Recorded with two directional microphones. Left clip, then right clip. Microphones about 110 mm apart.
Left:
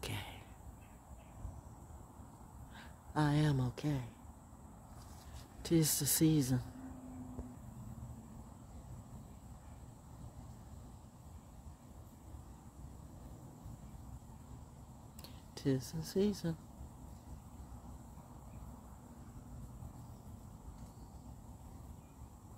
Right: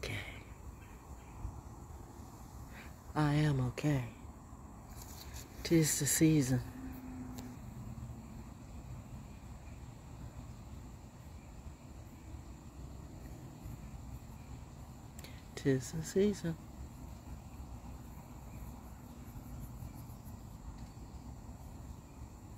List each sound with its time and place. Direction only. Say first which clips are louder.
0.0 s arrow: right 3 dB; 40° left (ahead or behind)
3.1 s speech: right 1 dB; 25° left (ahead or behind)
3.7 s speech: right 5 dB; centre (ahead or behind)
5.6 s speech: right 3 dB; 25° left (ahead or behind)
15.2 s speech: right 3 dB; 25° left (ahead or behind)